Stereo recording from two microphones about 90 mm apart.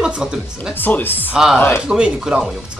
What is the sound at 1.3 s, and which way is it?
Speech, 5° right (ahead or behind).